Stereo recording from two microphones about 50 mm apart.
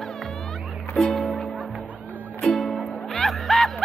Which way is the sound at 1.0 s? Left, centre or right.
Centre.